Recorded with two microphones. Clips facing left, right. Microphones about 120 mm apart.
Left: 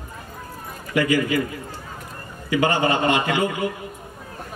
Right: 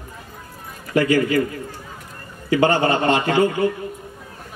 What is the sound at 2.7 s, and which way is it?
Speech, 40° right (ahead or behind).